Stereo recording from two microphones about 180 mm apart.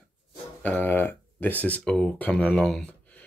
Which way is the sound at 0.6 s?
10° left (ahead or behind).